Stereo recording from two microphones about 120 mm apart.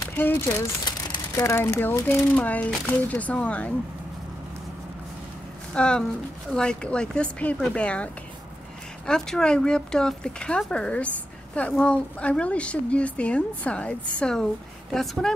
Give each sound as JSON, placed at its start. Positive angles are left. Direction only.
{"t": 0.1, "sound": "a sound", "side_deg": 15}
{"t": 1.4, "sound": "speech", "side_deg": 25}
{"t": 5.7, "sound": "speech", "side_deg": 5}